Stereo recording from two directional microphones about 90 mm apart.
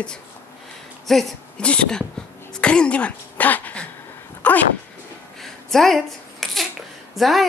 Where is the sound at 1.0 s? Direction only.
5° left (ahead or behind).